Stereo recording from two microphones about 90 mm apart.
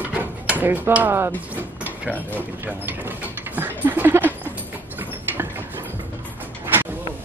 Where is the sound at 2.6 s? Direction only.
20° right (ahead or behind).